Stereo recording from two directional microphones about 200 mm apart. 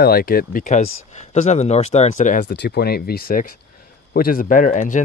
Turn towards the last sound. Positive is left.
turn(degrees=40)  # may be behind; listen again after turning